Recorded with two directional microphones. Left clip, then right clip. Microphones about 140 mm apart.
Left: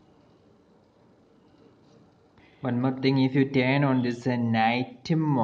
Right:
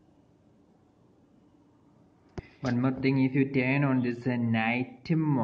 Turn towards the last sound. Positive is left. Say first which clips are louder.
# left 3 dB
turn(degrees=30)  # may be behind; listen again after turning